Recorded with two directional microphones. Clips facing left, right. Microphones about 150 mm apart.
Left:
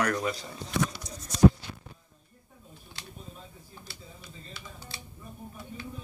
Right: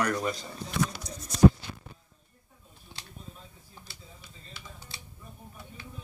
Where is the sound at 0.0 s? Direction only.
Centre (ahead or behind).